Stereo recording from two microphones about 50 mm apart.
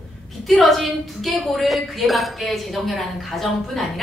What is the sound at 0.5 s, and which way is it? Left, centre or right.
A woman's voice, centre.